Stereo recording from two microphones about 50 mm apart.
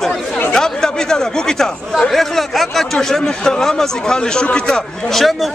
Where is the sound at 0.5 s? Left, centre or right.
Centre.